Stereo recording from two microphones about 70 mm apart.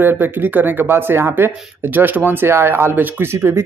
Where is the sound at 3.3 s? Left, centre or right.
Right.